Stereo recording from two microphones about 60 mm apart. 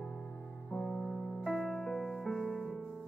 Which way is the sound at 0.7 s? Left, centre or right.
Left.